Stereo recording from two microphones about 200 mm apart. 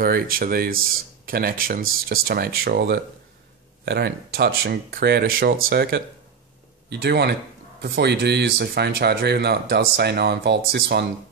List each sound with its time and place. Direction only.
0.0 s speech: 45° right (ahead or behind)